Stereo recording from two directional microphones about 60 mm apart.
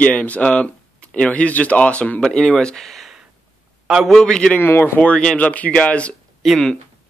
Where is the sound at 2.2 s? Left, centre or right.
Centre.